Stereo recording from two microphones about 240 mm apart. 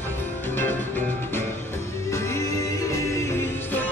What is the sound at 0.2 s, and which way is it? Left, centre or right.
Music, centre.